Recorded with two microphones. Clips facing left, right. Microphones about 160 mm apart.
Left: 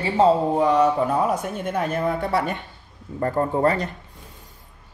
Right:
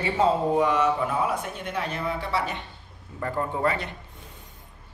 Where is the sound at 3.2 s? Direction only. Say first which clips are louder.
Left 6 dB; 40° left (ahead or behind).